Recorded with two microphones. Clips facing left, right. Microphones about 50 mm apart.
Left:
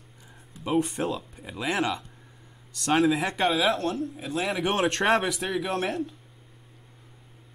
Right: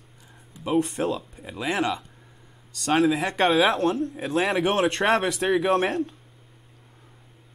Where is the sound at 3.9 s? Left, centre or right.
Right.